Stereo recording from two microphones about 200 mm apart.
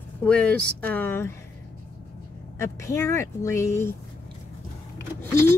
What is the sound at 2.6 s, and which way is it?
Speech, 15° left (ahead or behind).